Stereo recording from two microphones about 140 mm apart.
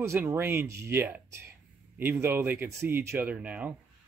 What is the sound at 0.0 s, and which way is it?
Speech, 20° right (ahead or behind).